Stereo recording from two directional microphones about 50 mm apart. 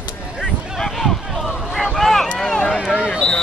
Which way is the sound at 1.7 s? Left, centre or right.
Centre.